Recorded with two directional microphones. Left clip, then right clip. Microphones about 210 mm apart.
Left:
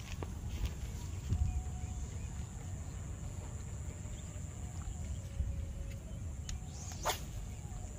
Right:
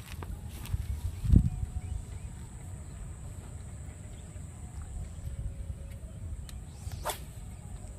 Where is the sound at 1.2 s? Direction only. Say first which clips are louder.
Right 17 dB; 10° right (ahead or behind).